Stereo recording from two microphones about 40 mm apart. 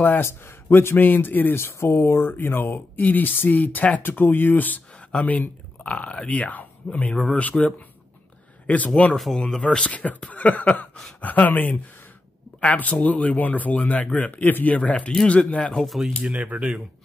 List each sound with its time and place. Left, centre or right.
0.2 s speech: left
1.5 s speech: left
5.9 s speech: left
8.6 s speech: left
9.6 s speech: left
9.8 s speech: left
14.8 s speech: left
16.2 s speech: right